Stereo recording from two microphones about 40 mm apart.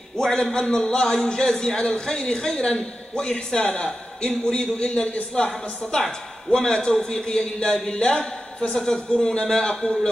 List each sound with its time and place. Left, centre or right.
0.2 s a man's voice: centre